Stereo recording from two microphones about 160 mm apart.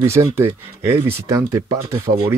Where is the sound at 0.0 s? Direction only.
15° right (ahead or behind).